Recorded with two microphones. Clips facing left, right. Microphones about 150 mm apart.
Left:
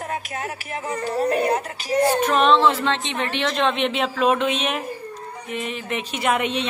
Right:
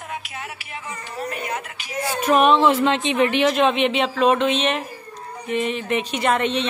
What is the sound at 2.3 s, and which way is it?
A woman's voice, 10° right (ahead or behind).